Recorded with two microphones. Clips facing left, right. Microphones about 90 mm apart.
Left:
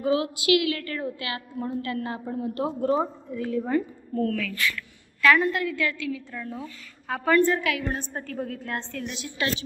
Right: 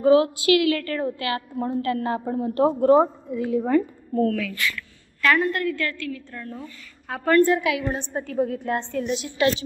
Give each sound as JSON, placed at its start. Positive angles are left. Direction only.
{"t": 0.0, "sound": "a woman's voice", "side_deg": -35}
{"t": 3.5, "sound": "a woman's voice", "side_deg": -50}
{"t": 4.3, "sound": "a woman's voice", "side_deg": -15}
{"t": 5.2, "sound": "a woman's voice", "side_deg": 0}
{"t": 7.4, "sound": "a woman's voice", "side_deg": -10}